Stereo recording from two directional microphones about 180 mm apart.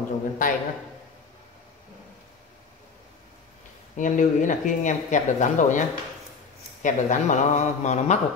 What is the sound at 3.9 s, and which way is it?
Speech, 45° left (ahead or behind).